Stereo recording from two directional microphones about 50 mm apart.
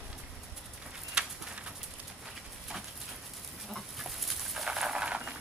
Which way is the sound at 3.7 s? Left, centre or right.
Centre.